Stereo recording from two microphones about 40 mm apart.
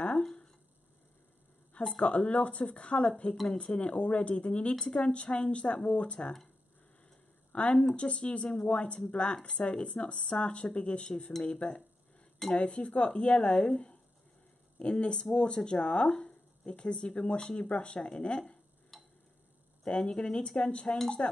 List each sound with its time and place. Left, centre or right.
2.0 s speech: left
7.5 s speech: left
14.8 s speech: left
18.9 s tick-tock: centre
19.8 s speech: left